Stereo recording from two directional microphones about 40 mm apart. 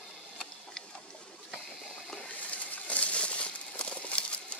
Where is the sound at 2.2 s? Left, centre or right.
Left.